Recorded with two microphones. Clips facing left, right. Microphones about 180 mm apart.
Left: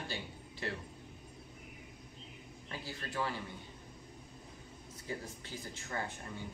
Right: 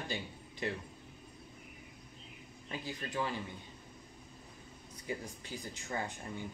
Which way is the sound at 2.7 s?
15° right (ahead or behind).